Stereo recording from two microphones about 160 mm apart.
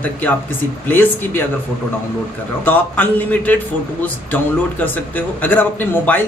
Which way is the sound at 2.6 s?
10° left (ahead or behind).